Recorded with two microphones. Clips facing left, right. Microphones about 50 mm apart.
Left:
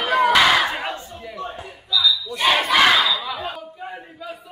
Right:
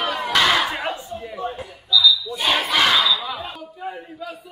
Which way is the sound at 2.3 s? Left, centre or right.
Centre.